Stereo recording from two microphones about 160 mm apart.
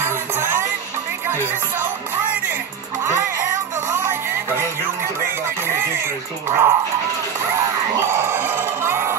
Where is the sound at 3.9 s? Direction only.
15° right (ahead or behind).